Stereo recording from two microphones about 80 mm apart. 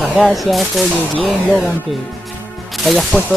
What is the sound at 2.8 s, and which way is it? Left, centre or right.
Speech, centre.